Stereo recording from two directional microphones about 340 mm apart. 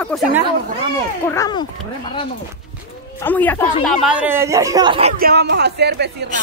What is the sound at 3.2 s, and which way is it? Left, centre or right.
A man's voice, centre.